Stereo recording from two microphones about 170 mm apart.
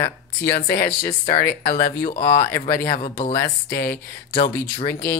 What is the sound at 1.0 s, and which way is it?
Speech, 55° left (ahead or behind).